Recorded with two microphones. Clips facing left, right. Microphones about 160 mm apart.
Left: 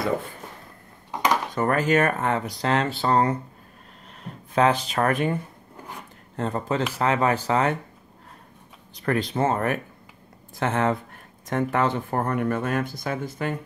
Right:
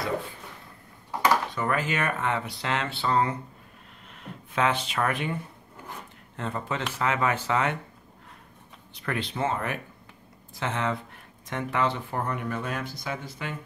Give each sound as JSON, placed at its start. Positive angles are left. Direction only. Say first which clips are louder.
{"t": 1.1, "sound": "dishes", "louder": "even", "side_deg": 20}
{"t": 1.5, "sound": "speech", "louder": "left 7 dB", "side_deg": 45}
{"t": 6.3, "sound": "speech", "louder": "left 6 dB", "side_deg": 40}
{"t": 8.9, "sound": "speech", "louder": "left 7 dB", "side_deg": 40}